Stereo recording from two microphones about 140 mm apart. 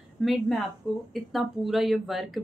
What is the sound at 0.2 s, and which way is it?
Speech, centre (ahead or behind).